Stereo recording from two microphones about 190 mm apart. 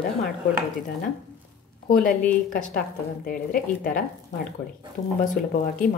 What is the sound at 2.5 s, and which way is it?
A woman's voice, 45° left (ahead or behind).